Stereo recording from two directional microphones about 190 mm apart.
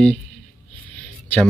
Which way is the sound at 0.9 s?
10° left (ahead or behind).